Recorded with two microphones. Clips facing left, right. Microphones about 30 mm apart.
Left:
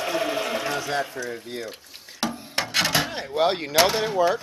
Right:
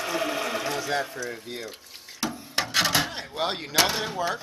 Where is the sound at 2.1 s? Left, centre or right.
Left.